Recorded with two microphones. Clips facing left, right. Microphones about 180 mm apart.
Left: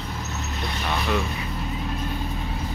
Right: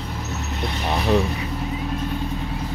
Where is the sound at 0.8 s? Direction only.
30° right (ahead or behind).